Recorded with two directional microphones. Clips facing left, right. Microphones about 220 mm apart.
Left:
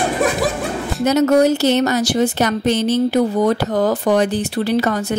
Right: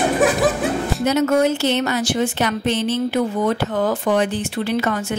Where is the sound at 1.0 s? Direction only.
40° left (ahead or behind).